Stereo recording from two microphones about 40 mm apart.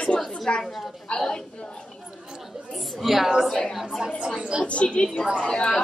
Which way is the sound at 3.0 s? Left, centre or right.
Centre.